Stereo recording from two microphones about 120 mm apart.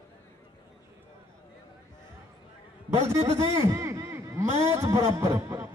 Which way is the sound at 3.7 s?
25° right (ahead or behind).